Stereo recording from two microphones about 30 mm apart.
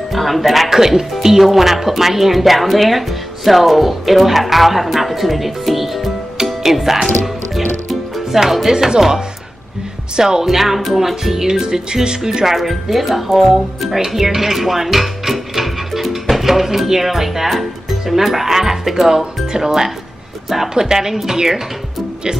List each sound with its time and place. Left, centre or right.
0.1 s speech: centre
0.7 s speech: centre
7.5 s music: centre
8.6 s speech: centre
10.1 s speech: right
10.4 s speech: centre
11.4 s speech: centre
12.5 s speech: centre
20.7 s speech: centre